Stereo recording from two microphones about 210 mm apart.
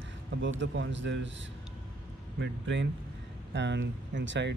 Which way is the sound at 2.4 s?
60° right (ahead or behind).